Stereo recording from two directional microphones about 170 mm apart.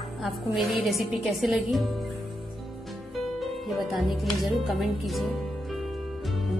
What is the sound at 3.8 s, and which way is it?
Speech, centre (ahead or behind).